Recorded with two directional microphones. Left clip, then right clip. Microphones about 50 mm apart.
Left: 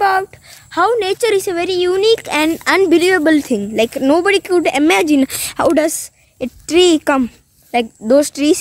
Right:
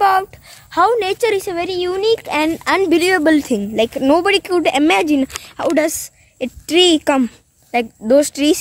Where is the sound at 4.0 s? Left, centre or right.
Right.